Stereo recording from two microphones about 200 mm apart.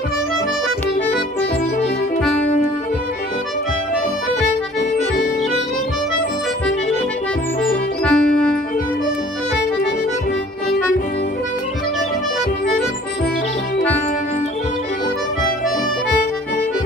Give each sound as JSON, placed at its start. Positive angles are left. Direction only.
{"t": 8.0, "sound": "music", "side_deg": 5}